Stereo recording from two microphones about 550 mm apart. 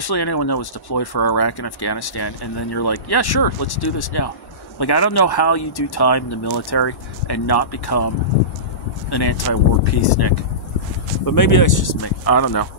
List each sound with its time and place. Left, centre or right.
0.0 s speech: left
9.1 s speech: left